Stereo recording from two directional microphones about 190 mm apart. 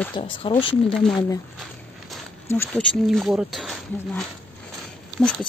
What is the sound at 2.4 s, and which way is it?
Speech, 10° left (ahead or behind).